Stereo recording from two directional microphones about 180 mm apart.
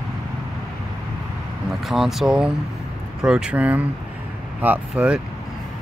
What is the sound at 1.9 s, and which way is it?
Speech, centre (ahead or behind).